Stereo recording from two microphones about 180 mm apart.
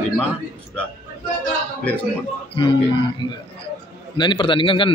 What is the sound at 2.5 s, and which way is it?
A man's voice, 30° left (ahead or behind).